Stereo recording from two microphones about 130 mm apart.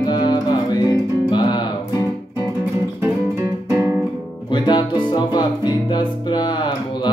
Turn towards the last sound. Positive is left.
turn(degrees=35)  # may be behind; listen again after turning